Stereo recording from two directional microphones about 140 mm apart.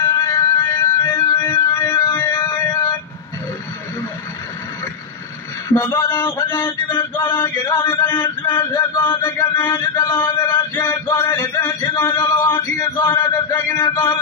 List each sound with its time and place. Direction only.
0.0 s music: 20° left (ahead or behind)
5.7 s speech: 25° left (ahead or behind)
6.5 s a sound: 15° left (ahead or behind)
7.6 s speech: 30° left (ahead or behind)
8.0 s a sound: 15° left (ahead or behind)
10.5 s male singing: 15° left (ahead or behind)